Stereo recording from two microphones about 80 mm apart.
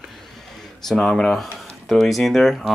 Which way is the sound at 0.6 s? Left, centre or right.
Centre.